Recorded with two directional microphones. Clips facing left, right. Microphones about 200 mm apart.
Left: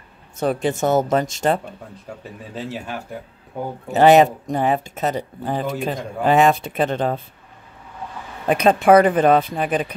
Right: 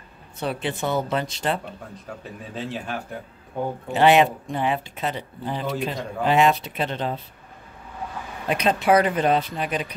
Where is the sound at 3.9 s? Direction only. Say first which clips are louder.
Left 5 dB; 40° left (ahead or behind).